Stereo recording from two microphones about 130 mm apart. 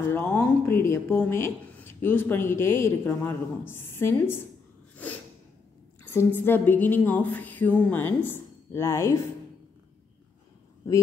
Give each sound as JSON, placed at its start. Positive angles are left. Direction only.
{"t": 0.1, "sound": "speech", "side_deg": 15}
{"t": 6.1, "sound": "speech", "side_deg": 15}